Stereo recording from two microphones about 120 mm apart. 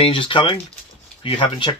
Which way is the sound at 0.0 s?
45° left (ahead or behind).